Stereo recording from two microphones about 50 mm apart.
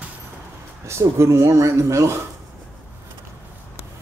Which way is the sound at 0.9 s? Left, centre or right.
Right.